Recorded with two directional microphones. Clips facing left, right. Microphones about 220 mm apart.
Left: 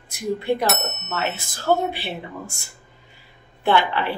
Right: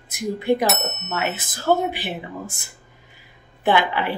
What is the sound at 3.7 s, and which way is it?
Speech, 15° right (ahead or behind).